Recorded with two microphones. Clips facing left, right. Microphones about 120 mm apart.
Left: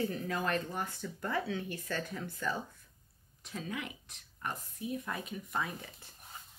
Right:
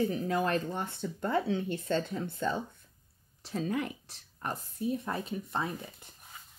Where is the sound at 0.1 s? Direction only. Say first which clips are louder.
Right 5 dB; 25° right (ahead or behind).